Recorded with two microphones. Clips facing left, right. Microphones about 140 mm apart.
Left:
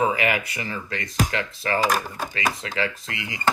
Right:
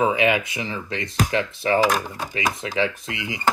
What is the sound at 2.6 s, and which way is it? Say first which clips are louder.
Speech: right 4 dB; 20° right (ahead or behind).